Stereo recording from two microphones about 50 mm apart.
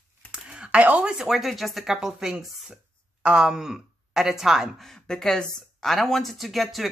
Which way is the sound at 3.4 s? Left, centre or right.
Centre.